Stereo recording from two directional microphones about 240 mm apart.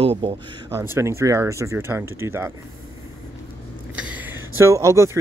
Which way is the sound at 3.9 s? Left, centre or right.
Centre.